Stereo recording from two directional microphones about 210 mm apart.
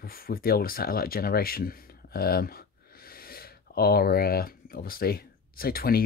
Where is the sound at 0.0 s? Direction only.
45° left (ahead or behind).